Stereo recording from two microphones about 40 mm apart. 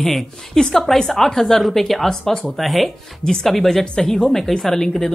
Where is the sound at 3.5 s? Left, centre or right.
Centre.